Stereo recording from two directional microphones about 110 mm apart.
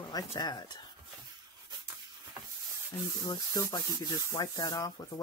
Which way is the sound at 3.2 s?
40° left (ahead or behind).